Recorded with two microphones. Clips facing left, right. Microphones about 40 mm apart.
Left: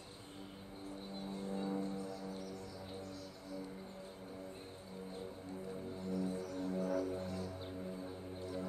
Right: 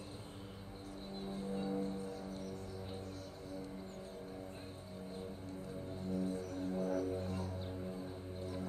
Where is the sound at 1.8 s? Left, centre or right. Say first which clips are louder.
Right 1 dB; right.